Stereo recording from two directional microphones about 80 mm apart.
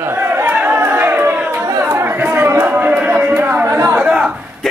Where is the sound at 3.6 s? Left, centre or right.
Right.